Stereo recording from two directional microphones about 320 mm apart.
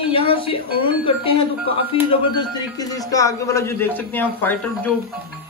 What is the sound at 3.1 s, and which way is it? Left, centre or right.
A man's voice, centre.